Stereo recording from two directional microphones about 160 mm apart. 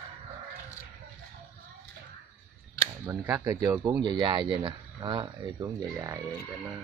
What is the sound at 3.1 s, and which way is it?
Speech, 20° right (ahead or behind).